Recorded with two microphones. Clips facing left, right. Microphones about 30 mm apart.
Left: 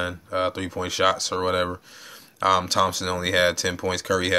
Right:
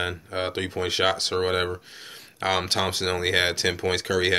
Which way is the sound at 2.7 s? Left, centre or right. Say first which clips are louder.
Left 2 dB; right.